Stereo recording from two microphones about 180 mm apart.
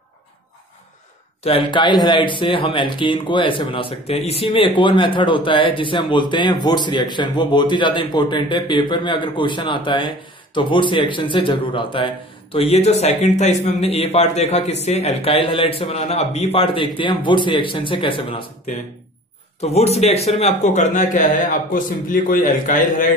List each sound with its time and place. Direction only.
1.4 s speech: 30° left (ahead or behind)
19.6 s speech: 35° left (ahead or behind)